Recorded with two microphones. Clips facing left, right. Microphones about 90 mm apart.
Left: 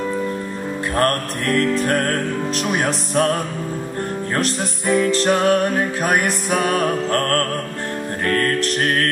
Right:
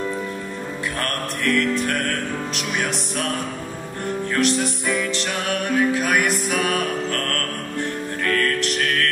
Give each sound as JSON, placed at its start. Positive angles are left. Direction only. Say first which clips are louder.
{"t": 0.9, "sound": "music", "louder": "left 12 dB", "side_deg": 40}
{"t": 4.4, "sound": "music", "louder": "right 5 dB", "side_deg": 40}